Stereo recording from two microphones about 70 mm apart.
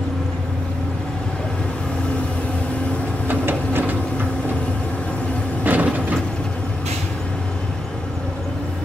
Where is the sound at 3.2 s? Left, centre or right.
Right.